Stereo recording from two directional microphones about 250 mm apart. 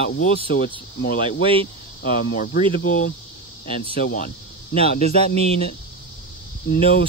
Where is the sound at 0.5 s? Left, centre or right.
Left.